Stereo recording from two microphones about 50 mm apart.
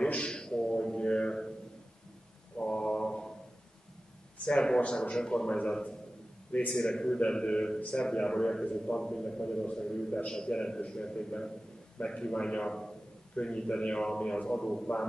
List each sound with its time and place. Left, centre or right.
0.0 s a sound: centre
2.5 s mantra: centre
4.5 s a man's voice: centre